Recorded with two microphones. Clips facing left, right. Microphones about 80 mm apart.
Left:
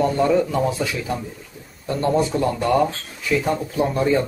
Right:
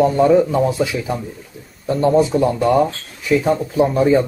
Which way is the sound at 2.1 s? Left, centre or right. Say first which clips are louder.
Right 5 dB; centre.